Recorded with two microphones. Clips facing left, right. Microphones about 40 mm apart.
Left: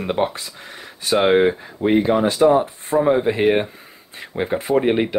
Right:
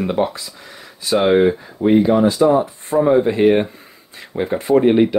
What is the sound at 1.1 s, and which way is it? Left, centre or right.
Speech, left.